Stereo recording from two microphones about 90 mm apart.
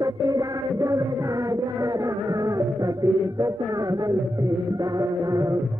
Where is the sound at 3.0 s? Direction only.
40° right (ahead or behind).